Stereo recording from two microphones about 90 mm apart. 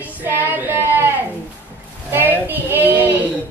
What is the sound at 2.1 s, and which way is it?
Speech, 20° right (ahead or behind).